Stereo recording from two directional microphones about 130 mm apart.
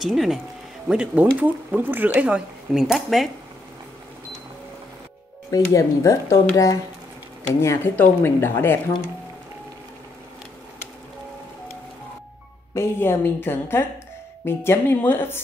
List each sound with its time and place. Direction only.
0.0 s speech: centre (ahead or behind)
5.5 s speech: 25° left (ahead or behind)
12.7 s speech: 20° left (ahead or behind)